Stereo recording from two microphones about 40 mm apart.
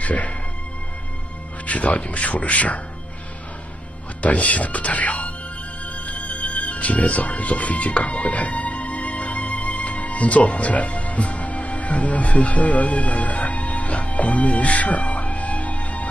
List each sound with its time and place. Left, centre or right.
0.0 s speech: left
1.7 s speech: left
4.2 s speech: left
6.3 s music: left